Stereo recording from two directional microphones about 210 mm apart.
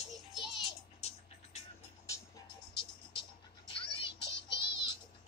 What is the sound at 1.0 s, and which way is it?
Music, 30° left (ahead or behind).